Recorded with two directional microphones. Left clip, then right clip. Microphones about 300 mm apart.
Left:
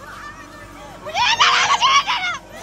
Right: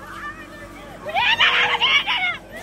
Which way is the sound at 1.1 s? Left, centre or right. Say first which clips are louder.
Left 2 dB; centre.